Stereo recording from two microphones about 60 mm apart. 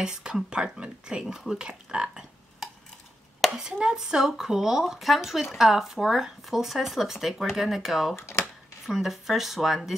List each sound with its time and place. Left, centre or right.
0.0 s speech: centre
3.4 s a sound: centre
3.8 s speech: centre
8.2 s speech: left
8.8 s speech: centre